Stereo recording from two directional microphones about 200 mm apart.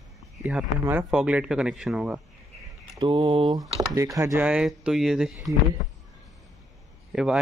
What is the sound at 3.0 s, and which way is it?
Speech, 25° right (ahead or behind).